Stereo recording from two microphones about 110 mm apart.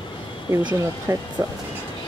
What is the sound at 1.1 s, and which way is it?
Speech, 25° right (ahead or behind).